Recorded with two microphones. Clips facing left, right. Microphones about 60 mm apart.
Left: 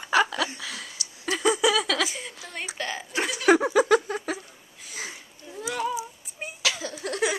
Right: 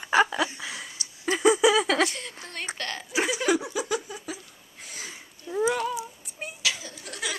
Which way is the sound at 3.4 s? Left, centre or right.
Left.